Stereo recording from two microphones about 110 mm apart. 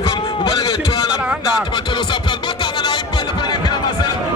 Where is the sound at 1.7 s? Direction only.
45° left (ahead or behind).